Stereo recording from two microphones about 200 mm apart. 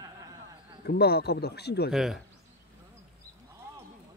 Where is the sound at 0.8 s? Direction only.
55° left (ahead or behind).